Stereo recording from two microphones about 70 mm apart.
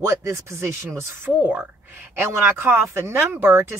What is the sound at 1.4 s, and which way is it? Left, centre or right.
Speech, right.